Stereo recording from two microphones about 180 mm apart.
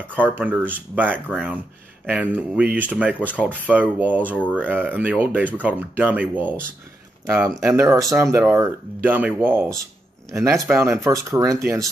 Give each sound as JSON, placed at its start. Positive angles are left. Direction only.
{"t": 0.1, "sound": "speech", "side_deg": -10}
{"t": 7.7, "sound": "speech", "side_deg": -15}